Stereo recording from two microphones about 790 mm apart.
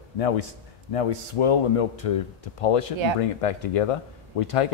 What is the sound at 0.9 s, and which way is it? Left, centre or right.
Speech, left.